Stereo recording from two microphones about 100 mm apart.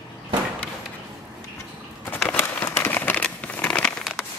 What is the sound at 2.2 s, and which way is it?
Crumpling, 20° left (ahead or behind).